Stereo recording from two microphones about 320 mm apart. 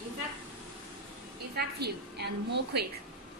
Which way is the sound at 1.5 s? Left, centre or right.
Right.